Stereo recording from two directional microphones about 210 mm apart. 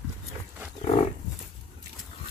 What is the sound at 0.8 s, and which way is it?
Wild animals, 30° left (ahead or behind).